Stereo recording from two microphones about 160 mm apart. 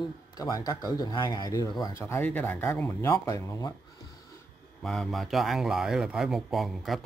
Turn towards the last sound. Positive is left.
turn(degrees=0)  # may be behind; listen again after turning